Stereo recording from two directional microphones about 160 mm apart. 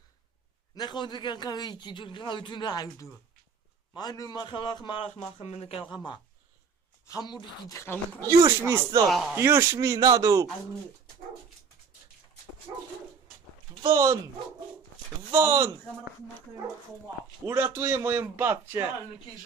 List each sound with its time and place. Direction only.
0.7 s a man's voice: 25° left (ahead or behind)
7.1 s a man's voice: 25° left (ahead or behind)
7.8 s speech: 10° left (ahead or behind)
8.2 s speech: 20° right (ahead or behind)
9.0 s speech: centre (ahead or behind)
9.3 s a man's voice: 15° right (ahead or behind)
15.3 s a man's voice: 20° right (ahead or behind)
17.5 s a man's voice: 15° right (ahead or behind)